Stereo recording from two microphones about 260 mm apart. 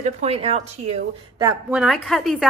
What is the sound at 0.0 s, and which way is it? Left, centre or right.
Speech, right.